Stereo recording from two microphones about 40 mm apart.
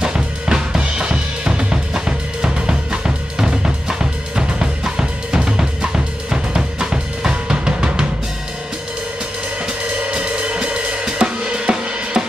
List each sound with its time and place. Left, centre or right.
0.0 s drum kit: centre
10.0 s cymbal: right